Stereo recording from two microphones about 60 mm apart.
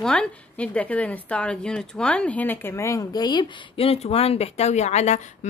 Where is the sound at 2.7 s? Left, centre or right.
Left.